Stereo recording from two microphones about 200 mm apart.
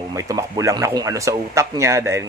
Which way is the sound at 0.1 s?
15° right (ahead or behind).